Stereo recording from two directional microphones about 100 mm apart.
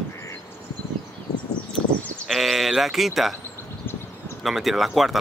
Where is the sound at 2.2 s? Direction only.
Centre (ahead or behind).